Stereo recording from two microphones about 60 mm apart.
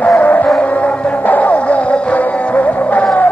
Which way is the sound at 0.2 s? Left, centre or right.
Left.